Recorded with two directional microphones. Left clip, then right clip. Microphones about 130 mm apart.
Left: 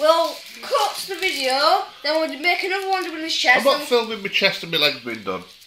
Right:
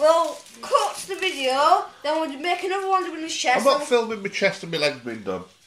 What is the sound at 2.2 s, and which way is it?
Speech, centre (ahead or behind).